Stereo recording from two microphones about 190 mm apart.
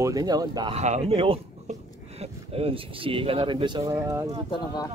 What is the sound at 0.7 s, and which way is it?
Speech, 35° right (ahead or behind).